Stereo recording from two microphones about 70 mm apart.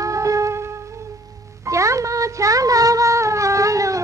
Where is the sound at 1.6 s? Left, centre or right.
Right.